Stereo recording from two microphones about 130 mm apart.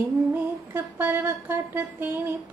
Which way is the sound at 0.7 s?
15° right (ahead or behind).